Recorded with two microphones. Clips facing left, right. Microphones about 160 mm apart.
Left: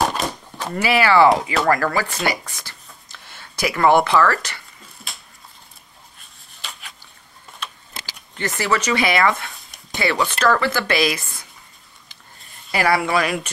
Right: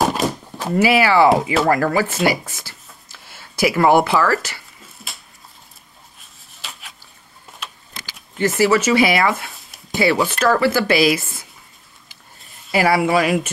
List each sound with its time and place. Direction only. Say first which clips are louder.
0.0 s speech: right 3 dB; 5° right (ahead or behind)
1.7 s speech: right 1 dB; 25° right (ahead or behind)
2.2 s writing: right 5 dB; 5° right (ahead or behind)
3.8 s speech: left 1 dB; 5° right (ahead or behind)
6.1 s a sound: right 1 dB; centre (ahead or behind)
8.4 s speech: right 6 dB; 5° right (ahead or behind)
12.4 s a sound: even; centre (ahead or behind)
12.9 s speech: right 3 dB; 10° right (ahead or behind)